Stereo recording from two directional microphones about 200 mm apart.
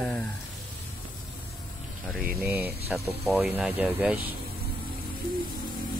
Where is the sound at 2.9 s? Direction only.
5° right (ahead or behind).